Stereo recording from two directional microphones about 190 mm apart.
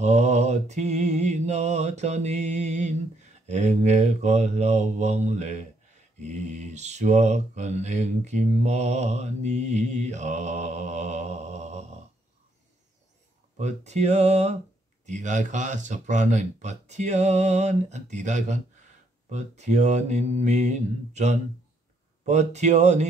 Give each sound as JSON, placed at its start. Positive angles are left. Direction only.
{"t": 0.0, "sound": "mantra", "side_deg": -35}
{"t": 3.4, "sound": "speech", "side_deg": -40}
{"t": 13.6, "sound": "speech", "side_deg": -35}